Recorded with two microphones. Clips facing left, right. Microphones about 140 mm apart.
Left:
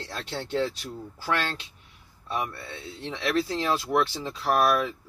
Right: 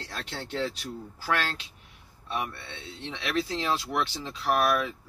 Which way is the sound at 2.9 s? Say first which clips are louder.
Left 3 dB; 40° left (ahead or behind).